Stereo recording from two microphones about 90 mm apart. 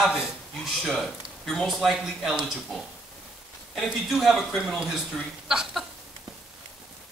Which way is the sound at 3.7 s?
Centre (ahead or behind).